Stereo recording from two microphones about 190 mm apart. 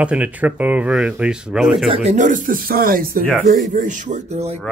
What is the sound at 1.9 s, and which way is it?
Speech, 35° right (ahead or behind).